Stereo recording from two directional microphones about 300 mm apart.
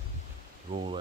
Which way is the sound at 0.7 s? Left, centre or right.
Right.